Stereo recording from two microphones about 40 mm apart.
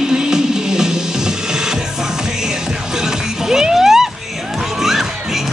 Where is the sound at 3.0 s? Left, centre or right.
Centre.